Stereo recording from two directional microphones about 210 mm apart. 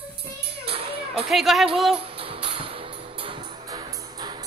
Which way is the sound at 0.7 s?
25° right (ahead or behind).